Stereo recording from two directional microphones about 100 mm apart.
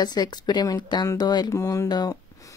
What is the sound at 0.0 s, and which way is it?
Speech, 45° left (ahead or behind).